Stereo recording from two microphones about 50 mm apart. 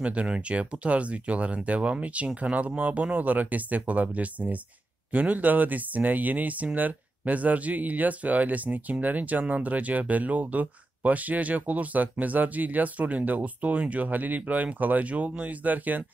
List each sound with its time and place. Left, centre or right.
0.0 s speech: right